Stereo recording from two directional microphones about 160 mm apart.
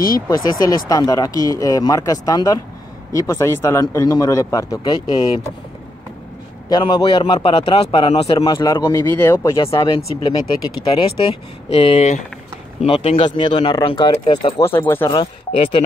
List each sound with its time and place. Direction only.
0.6 s speech: 20° left (ahead or behind)
6.7 s speech: 30° left (ahead or behind)
8.4 s speech: 25° left (ahead or behind)
8.8 s speech: 15° left (ahead or behind)
14.6 s speech: 15° left (ahead or behind)